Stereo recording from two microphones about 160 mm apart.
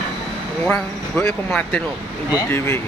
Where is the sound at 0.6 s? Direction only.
5° left (ahead or behind).